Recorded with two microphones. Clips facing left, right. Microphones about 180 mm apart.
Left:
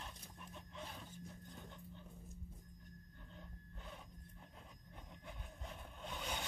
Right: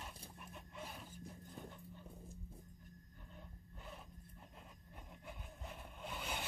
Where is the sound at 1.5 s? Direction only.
5° right (ahead or behind).